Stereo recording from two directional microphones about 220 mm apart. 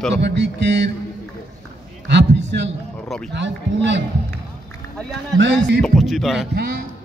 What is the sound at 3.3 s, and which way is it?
Speech, 55° right (ahead or behind).